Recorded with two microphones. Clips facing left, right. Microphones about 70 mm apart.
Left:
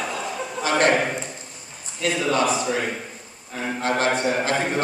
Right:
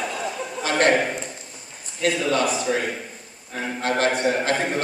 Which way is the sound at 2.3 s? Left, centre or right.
Left.